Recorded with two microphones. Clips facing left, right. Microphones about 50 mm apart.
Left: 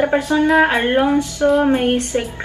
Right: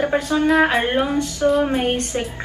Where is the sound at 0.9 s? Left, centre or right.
Centre.